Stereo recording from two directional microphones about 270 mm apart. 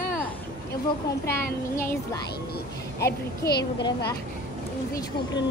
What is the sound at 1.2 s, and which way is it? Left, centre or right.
Speech, centre.